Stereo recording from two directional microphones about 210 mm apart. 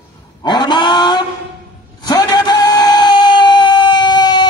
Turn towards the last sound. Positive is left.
turn(degrees=20)  # may be behind; listen again after turning